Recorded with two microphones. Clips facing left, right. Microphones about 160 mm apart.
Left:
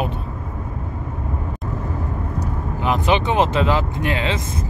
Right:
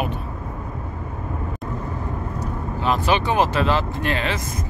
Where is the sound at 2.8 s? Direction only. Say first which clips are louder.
Left 1 dB; 15° left (ahead or behind).